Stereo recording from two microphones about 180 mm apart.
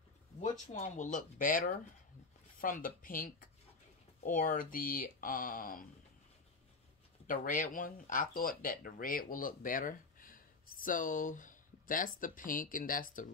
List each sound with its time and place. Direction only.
0.4 s speech: 40° left (ahead or behind)
7.2 s speech: 50° left (ahead or behind)